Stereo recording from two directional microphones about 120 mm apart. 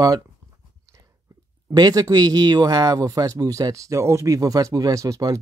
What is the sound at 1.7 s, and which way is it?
Speech, 35° right (ahead or behind).